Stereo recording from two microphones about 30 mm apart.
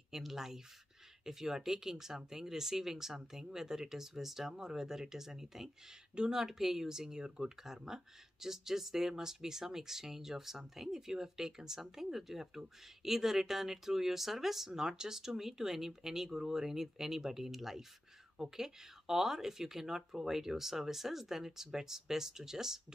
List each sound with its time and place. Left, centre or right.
0.1 s speech: centre
14.9 s speech: right